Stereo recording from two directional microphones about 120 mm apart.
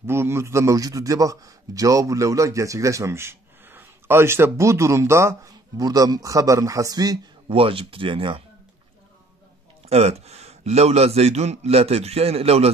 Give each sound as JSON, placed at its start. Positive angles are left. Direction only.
{"t": 0.0, "sound": "a man's voice", "side_deg": -20}
{"t": 7.4, "sound": "speech", "side_deg": -50}
{"t": 9.8, "sound": "a man's voice", "side_deg": -60}